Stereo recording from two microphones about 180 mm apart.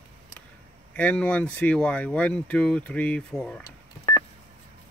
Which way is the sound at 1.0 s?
5° left (ahead or behind).